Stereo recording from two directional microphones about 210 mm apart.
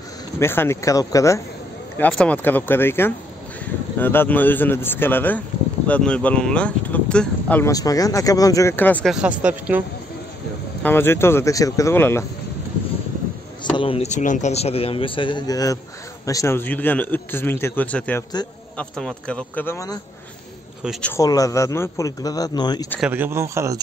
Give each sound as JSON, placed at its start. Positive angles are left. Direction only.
{"t": 0.4, "sound": "speech", "side_deg": 10}
{"t": 10.8, "sound": "speech", "side_deg": 10}
{"t": 13.7, "sound": "a man's voice", "side_deg": 25}
{"t": 20.8, "sound": "speech", "side_deg": 0}
{"t": 21.1, "sound": "speech", "side_deg": 15}
{"t": 22.9, "sound": "speech", "side_deg": -5}